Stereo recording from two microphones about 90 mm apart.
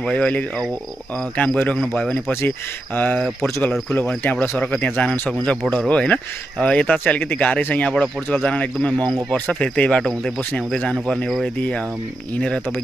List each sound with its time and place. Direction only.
0.0 s speech: 15° left (ahead or behind)
2.4 s speech: 20° left (ahead or behind)
3.9 s speech: 10° left (ahead or behind)
11.2 s speech: centre (ahead or behind)